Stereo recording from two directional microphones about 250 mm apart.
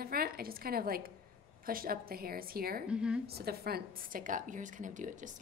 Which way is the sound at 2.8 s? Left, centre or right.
Centre.